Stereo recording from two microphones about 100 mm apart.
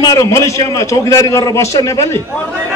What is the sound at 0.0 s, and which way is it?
A man's voice, 35° left (ahead or behind).